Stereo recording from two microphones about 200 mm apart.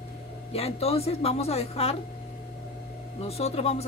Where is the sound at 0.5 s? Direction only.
30° left (ahead or behind).